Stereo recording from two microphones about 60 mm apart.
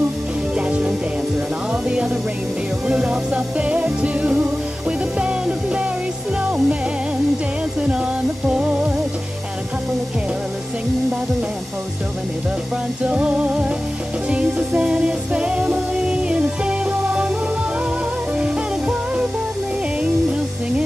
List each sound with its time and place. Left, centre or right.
0.6 s music: centre
8.5 s music: centre
13.0 s music: centre
18.4 s music: centre